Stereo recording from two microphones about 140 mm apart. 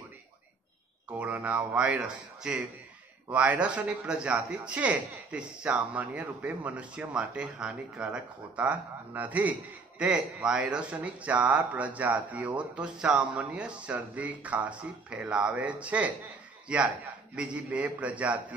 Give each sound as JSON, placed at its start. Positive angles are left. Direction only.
{"t": 1.1, "sound": "a man's voice", "side_deg": -10}